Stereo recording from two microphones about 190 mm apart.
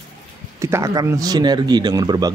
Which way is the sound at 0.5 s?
15° right (ahead or behind).